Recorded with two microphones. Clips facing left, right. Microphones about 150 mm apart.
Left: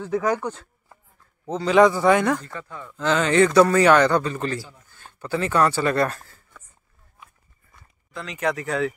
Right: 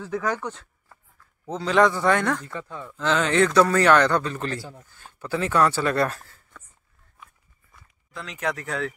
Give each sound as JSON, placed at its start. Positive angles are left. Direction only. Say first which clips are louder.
{"t": 0.2, "sound": "a man's voice", "louder": "left 3 dB", "side_deg": 10}
{"t": 1.5, "sound": "a man's voice", "louder": "left 4 dB", "side_deg": 0}
{"t": 2.4, "sound": "speech", "louder": "right 1 dB", "side_deg": -15}
{"t": 2.9, "sound": "a man's voice", "louder": "left 2 dB", "side_deg": 0}
{"t": 4.6, "sound": "speech", "louder": "left 1 dB", "side_deg": -55}
{"t": 5.0, "sound": "speech", "louder": "left 1 dB", "side_deg": 0}
{"t": 7.7, "sound": "speech", "louder": "left 3 dB", "side_deg": 0}